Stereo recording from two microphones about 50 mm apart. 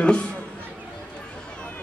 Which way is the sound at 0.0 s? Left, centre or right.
Centre.